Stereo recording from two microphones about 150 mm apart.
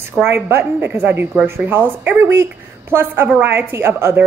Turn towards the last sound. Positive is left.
turn(degrees=-15)  # may be behind; listen again after turning